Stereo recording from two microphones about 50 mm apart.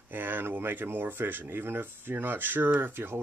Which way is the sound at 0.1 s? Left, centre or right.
Right.